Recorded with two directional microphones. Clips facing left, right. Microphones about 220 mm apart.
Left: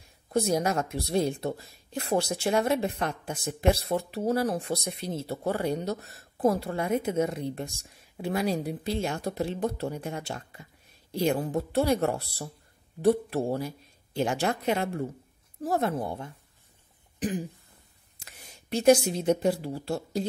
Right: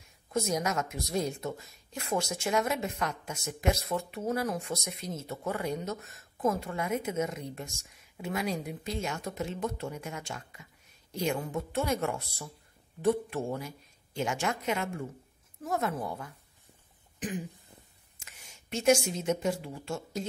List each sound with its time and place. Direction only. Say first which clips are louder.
0.3 s a woman's voice: left 5 dB; 35° left (ahead or behind)